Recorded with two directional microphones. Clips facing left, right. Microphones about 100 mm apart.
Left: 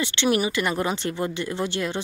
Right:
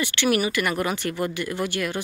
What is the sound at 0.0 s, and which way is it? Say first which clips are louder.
Speech: even; 25° left (ahead or behind).